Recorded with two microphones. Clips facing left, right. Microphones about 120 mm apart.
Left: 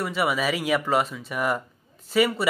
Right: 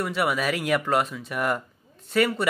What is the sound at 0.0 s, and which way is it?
Speech, centre (ahead or behind).